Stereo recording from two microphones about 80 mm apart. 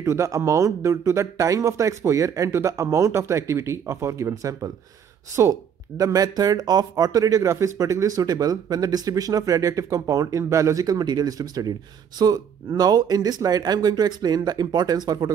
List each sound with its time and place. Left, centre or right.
0.0 s speech: right